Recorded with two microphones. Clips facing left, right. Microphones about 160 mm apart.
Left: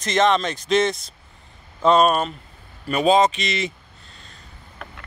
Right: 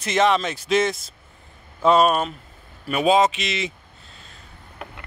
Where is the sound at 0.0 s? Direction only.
5° right (ahead or behind).